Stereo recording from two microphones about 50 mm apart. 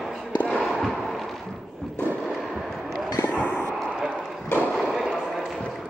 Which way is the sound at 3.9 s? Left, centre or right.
Centre.